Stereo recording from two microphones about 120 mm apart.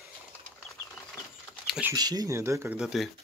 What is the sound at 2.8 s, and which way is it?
Speech, 5° right (ahead or behind).